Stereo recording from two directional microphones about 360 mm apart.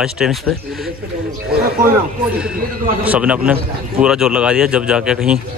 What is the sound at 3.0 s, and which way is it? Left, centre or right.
Speech, centre.